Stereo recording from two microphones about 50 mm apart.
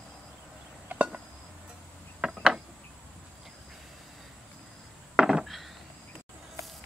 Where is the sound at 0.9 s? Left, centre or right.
Right.